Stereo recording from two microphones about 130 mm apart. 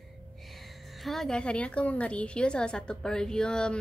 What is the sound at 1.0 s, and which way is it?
A woman's voice, 5° left (ahead or behind).